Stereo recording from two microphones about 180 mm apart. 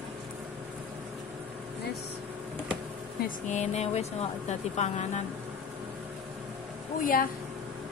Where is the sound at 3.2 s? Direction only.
40° left (ahead or behind).